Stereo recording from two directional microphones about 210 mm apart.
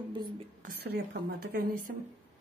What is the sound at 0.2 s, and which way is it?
A woman's voice, 45° right (ahead or behind).